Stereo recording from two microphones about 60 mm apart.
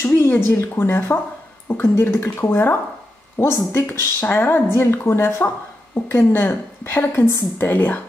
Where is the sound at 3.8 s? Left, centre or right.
Left.